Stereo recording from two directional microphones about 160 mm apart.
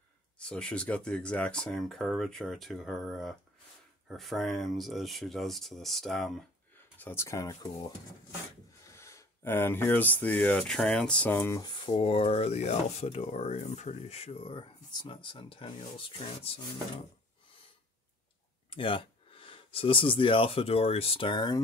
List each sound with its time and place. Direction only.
0.4 s speech: 5° left (ahead or behind)
7.0 s speech: 15° left (ahead or behind)
11.7 s speech: 35° left (ahead or behind)
18.7 s speech: 30° left (ahead or behind)